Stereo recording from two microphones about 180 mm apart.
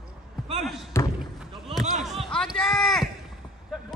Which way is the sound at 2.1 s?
Centre (ahead or behind).